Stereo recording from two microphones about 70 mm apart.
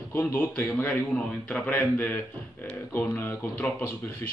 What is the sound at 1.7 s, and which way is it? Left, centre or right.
Speech, left.